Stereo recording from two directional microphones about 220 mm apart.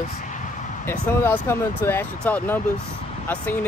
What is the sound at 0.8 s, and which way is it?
Speech, 10° left (ahead or behind).